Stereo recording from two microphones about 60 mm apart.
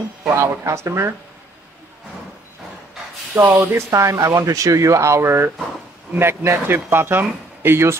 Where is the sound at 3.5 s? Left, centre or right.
Right.